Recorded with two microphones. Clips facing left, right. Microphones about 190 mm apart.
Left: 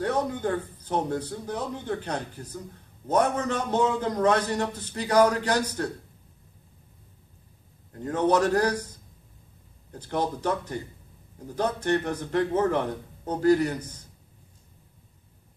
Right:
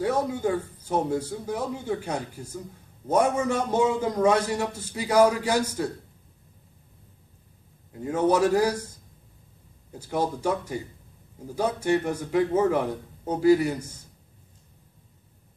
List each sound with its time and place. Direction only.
0.0 s a man's voice: 10° right (ahead or behind)
7.9 s a man's voice: 10° right (ahead or behind)
9.9 s a man's voice: 10° right (ahead or behind)